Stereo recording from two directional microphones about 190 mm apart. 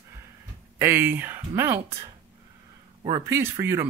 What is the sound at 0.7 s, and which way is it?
Speech, 10° right (ahead or behind).